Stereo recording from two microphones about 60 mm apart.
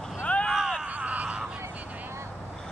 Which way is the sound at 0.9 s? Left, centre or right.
Right.